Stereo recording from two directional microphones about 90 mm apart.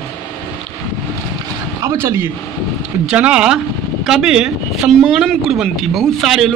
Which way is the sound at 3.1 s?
10° right (ahead or behind).